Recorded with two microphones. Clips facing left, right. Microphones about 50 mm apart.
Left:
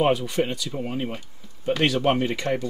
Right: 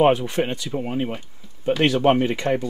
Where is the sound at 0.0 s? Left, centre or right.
Right.